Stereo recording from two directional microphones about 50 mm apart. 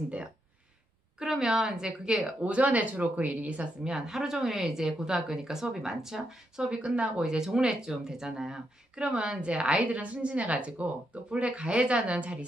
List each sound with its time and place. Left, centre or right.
1.2 s speech: centre
2.4 s speech: right
3.8 s speech: centre